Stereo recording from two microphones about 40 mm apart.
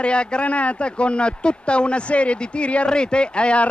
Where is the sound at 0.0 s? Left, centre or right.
Left.